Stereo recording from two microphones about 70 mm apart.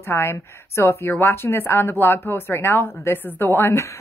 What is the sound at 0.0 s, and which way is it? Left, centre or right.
Speech, left.